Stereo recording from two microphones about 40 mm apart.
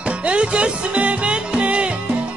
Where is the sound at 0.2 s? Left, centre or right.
Right.